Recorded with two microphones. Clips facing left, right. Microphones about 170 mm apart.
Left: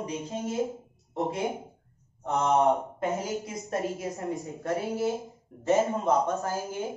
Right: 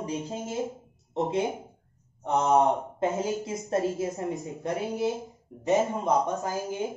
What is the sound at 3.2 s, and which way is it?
A woman's voice, 25° right (ahead or behind).